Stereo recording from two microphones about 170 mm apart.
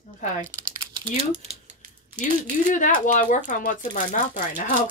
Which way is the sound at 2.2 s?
50° left (ahead or behind).